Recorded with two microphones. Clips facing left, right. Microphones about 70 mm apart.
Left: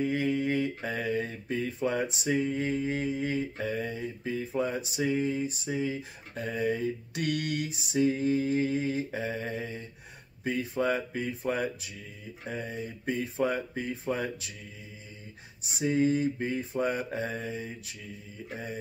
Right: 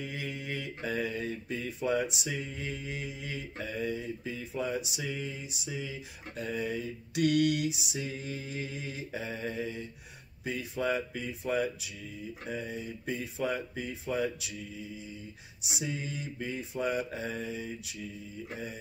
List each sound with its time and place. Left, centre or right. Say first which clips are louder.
0.0 s speech: left 11 dB; left
15.6 s speech: left 11 dB; left